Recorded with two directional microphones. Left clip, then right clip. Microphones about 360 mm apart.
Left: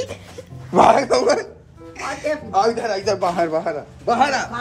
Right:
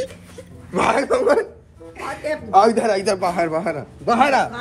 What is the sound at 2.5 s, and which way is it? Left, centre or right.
A man's voice, centre.